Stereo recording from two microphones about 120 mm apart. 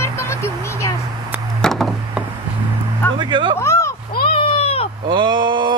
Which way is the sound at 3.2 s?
45° right (ahead or behind).